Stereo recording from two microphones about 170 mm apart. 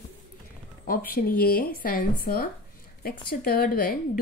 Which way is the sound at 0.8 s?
60° left (ahead or behind).